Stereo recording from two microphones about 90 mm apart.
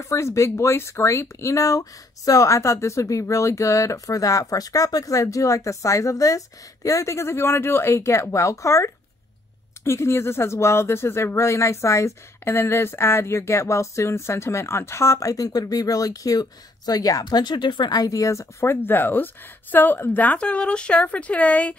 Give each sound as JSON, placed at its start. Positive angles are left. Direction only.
{"t": 0.0, "sound": "speech", "side_deg": 35}